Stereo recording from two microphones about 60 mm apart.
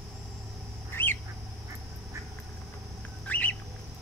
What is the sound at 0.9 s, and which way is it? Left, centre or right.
Bird, left.